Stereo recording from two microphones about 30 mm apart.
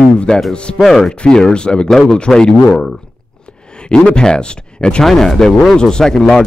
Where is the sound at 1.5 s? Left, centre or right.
Left.